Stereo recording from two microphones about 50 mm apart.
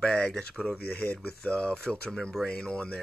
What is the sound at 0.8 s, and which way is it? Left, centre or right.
Speech, left.